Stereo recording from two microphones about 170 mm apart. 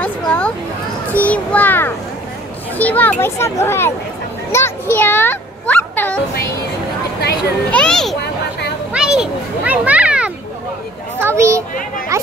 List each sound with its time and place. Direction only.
0.0 s a sound: 10° left (ahead or behind)
1.1 s a child's voice: 10° left (ahead or behind)
7.7 s a child's voice: 5° left (ahead or behind); by 12.3 s 15° right (ahead or behind)